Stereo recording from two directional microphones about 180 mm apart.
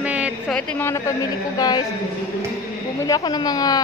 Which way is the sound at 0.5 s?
15° left (ahead or behind).